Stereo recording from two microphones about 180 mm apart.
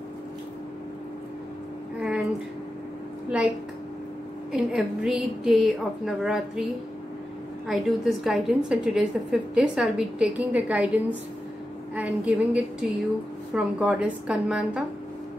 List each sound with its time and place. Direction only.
2.0 s a sound: 5° right (ahead or behind)
4.5 s a woman's voice: 5° right (ahead or behind)
7.6 s a woman's voice: centre (ahead or behind)